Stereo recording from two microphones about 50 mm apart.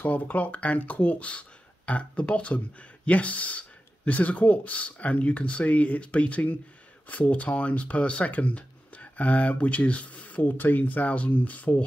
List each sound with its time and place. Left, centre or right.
0.0 s speech: left